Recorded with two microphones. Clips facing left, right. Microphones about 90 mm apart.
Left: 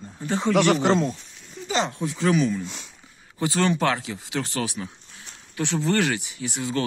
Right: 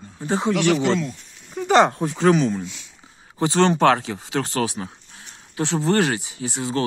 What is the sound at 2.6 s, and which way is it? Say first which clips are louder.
Speech: right 1 dB; 50° left (ahead or behind).